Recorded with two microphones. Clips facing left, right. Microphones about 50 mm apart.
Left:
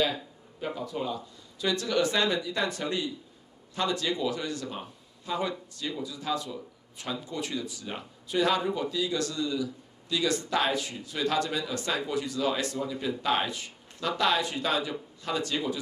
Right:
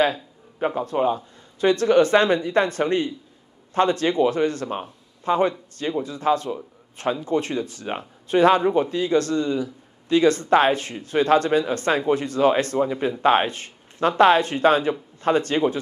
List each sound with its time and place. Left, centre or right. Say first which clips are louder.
0.0 s speech: right 7 dB; right